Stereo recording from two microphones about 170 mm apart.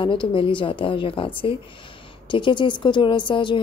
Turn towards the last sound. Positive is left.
turn(degrees=30)  # may be behind; listen again after turning